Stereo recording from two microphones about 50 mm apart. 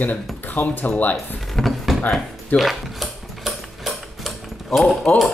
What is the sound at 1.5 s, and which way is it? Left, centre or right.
Drawer open or close, centre.